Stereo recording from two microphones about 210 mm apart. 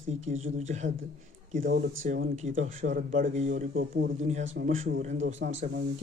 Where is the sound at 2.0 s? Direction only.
40° right (ahead or behind).